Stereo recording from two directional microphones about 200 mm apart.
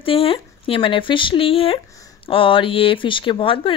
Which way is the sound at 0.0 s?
25° left (ahead or behind).